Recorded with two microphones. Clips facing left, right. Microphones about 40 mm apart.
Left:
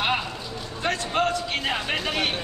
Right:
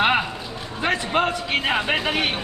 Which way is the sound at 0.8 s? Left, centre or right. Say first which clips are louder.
Right 3 dB; centre.